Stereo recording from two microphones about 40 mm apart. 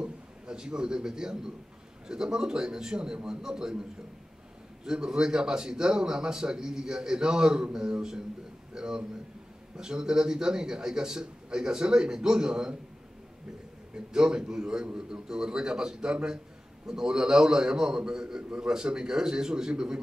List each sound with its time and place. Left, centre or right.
0.0 s a man's voice: centre
4.8 s a man's voice: centre
13.9 s a man's voice: right